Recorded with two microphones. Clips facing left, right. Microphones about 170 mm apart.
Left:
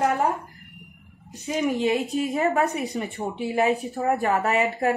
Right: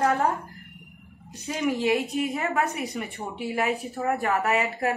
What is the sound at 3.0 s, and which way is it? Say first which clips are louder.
Speech: left 4 dB; 35° left (ahead or behind).